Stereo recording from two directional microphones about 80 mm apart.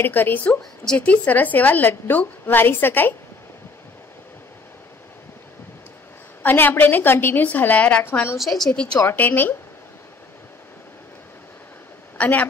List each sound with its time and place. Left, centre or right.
0.0 s a woman's voice: left
6.4 s a woman's voice: left
8.4 s a woman's voice: centre
9.0 s a woman's voice: left
12.2 s a woman's voice: left